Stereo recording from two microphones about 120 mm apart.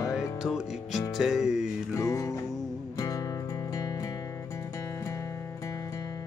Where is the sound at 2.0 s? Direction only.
25° left (ahead or behind).